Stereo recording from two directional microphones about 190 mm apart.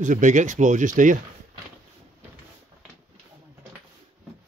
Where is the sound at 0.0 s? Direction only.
40° right (ahead or behind).